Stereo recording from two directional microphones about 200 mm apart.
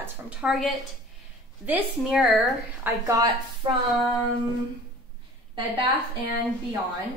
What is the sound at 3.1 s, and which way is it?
A woman's voice, 15° right (ahead or behind).